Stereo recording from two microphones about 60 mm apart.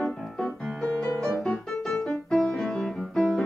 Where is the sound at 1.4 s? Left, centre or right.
Centre.